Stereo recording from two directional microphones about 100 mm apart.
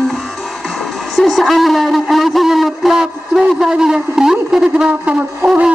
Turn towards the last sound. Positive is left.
turn(degrees=-10)  # may be behind; listen again after turning